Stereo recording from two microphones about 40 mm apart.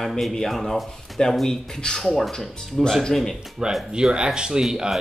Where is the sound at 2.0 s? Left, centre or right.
Centre.